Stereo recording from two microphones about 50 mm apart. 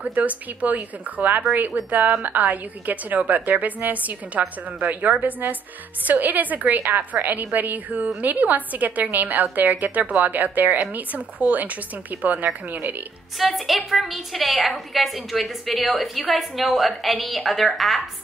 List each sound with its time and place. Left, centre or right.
0.0 s a woman's voice: right
13.4 s a woman's voice: centre